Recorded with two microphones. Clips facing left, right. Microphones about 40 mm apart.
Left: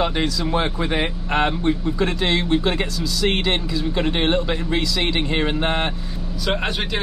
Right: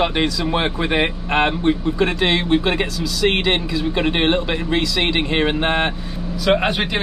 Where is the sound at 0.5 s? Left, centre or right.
Right.